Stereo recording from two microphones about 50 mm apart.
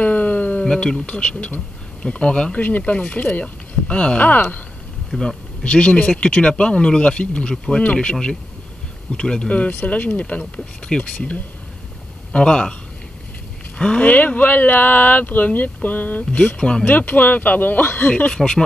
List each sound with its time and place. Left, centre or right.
0.0 s a sound: left
0.7 s speech: centre
4.3 s speech: left
5.1 s speech: centre
5.6 s speech: left
13.7 s speech: left
16.5 s speech: centre
16.8 s speech: left
18.1 s speech: left